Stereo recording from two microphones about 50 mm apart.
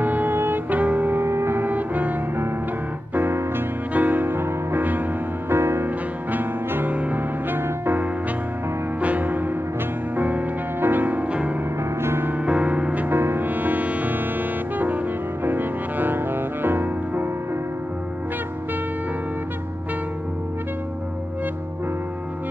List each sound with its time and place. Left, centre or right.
0.0 s music: right
1.6 s music: right
3.2 s music: right
3.9 s music: right
5.5 s music: right
6.9 s music: right
7.5 s music: right
12.0 s music: right
12.4 s music: right
13.1 s music: right
15.4 s music: right